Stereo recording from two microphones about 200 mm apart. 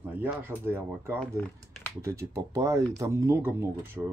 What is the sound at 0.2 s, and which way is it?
Speech, 10° right (ahead or behind).